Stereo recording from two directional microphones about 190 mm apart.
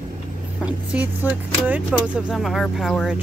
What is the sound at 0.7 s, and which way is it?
A woman's voice, 10° right (ahead or behind).